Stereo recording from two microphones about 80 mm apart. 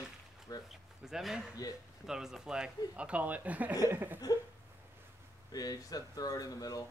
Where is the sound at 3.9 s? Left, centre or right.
Right.